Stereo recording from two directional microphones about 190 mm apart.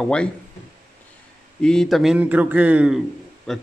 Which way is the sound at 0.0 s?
5° left (ahead or behind).